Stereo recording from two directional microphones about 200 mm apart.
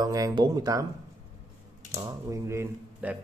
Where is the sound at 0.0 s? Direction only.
20° right (ahead or behind).